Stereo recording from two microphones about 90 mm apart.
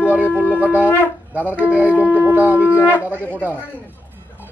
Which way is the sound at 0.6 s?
15° right (ahead or behind).